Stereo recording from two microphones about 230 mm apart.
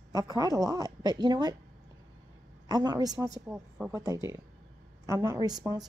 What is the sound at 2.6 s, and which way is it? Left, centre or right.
A woman's voice, centre.